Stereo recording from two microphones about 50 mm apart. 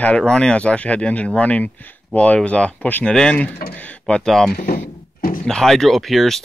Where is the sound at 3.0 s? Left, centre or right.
Centre.